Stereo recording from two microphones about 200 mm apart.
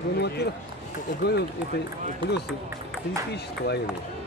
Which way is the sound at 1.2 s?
55° left (ahead or behind).